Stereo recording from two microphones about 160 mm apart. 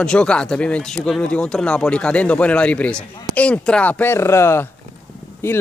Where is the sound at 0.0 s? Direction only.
5° left (ahead or behind).